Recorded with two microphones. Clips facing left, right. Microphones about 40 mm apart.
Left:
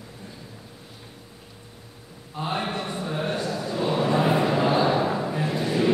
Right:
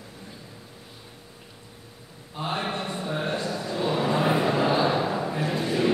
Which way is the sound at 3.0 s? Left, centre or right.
Centre.